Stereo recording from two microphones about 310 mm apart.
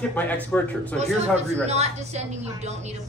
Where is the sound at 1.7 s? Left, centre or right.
Right.